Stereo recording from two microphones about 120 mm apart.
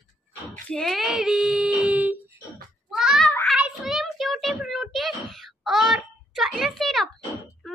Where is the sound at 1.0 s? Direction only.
5° right (ahead or behind).